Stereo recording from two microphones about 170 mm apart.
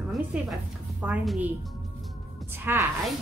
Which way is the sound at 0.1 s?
Centre (ahead or behind).